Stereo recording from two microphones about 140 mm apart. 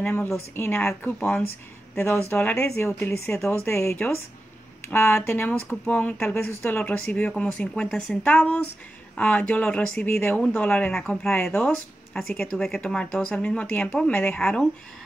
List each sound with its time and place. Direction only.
0.0 s speech: 15° left (ahead or behind)